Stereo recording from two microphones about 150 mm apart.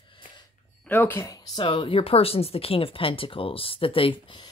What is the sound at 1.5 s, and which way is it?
Speech, 35° left (ahead or behind).